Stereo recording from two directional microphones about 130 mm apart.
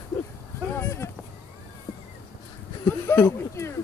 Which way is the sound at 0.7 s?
20° left (ahead or behind).